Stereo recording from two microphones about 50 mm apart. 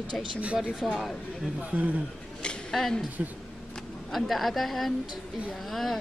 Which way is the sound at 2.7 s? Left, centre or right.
Centre.